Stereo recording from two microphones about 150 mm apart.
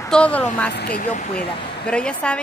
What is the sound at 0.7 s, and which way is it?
Speech, 90° left.